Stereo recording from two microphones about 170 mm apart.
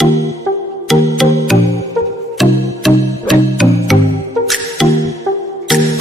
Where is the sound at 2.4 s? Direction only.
Centre (ahead or behind).